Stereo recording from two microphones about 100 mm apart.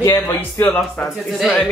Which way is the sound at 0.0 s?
25° left (ahead or behind).